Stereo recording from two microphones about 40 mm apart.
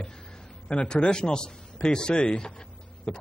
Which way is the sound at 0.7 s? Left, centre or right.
Left.